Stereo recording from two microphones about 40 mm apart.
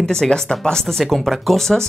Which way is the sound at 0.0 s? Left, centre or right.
Centre.